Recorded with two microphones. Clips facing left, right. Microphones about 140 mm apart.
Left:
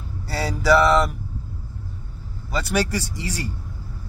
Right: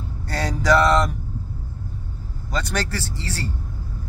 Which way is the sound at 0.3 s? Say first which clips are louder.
Left 1 dB; 5° left (ahead or behind).